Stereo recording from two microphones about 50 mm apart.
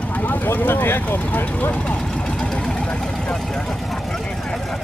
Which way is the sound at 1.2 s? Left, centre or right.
Left.